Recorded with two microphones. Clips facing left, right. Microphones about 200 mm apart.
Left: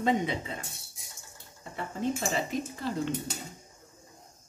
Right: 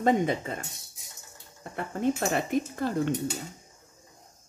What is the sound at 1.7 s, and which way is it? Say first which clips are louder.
Speech: right 4 dB; 55° right (ahead or behind).